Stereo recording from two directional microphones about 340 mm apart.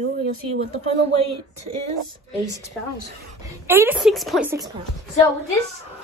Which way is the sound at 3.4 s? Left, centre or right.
Centre.